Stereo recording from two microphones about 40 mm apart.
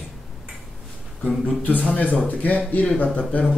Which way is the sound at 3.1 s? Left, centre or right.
Left.